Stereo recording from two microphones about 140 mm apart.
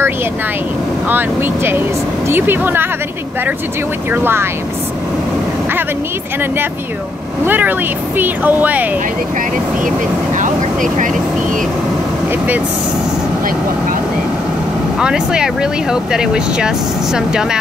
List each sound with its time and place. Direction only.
1.0 s speech: 15° right (ahead or behind)
4.1 s speech: 15° right (ahead or behind)
7.4 s speech: 15° right (ahead or behind)
10.3 s speech: 65° right (ahead or behind)
15.0 s speech: 5° right (ahead or behind)